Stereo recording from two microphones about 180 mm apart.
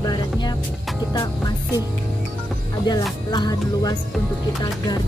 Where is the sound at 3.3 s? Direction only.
20° left (ahead or behind).